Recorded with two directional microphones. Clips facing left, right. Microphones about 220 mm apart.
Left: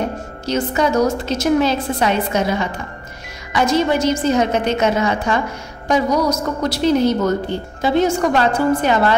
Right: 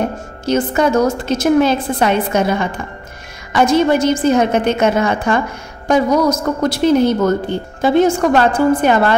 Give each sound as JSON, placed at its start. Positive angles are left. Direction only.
{"t": 0.5, "sound": "a woman's voice", "side_deg": -50}